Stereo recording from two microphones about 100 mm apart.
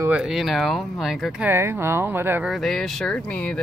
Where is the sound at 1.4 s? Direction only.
25° right (ahead or behind).